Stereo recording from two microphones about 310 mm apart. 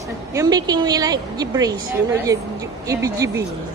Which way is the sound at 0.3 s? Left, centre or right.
Centre.